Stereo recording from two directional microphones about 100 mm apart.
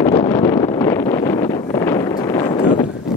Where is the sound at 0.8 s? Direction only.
30° left (ahead or behind).